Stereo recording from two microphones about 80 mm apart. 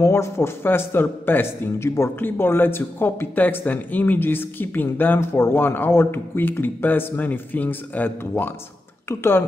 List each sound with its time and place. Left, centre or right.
0.0 s a man's voice: left